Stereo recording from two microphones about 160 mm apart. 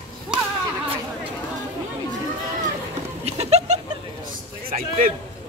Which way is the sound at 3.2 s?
40° right (ahead or behind).